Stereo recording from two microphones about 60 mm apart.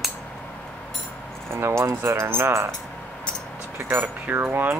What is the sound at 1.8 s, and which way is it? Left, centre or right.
Speech, right.